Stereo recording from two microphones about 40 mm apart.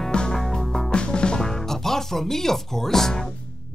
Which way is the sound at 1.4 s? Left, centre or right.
Centre.